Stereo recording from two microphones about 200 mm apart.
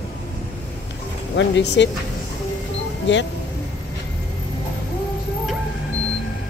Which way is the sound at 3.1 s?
60° left (ahead or behind).